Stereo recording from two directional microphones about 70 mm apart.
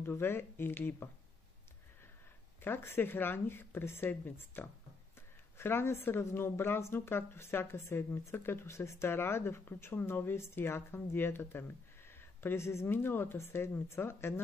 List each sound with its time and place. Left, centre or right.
0.0 s speech: left
2.6 s speech: left